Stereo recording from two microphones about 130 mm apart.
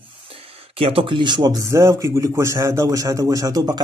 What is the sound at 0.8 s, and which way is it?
Speech, 45° right (ahead or behind).